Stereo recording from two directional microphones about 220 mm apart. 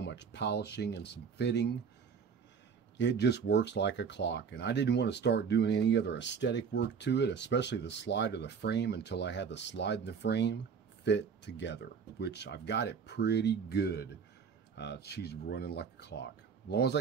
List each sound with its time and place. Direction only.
0.0 s speech: 50° left (ahead or behind)
3.0 s speech: 50° left (ahead or behind)